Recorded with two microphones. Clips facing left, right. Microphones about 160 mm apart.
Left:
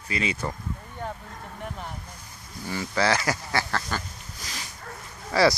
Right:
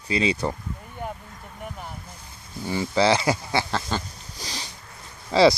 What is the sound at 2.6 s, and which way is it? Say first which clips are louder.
Speech: right 4 dB; 25° right (ahead or behind).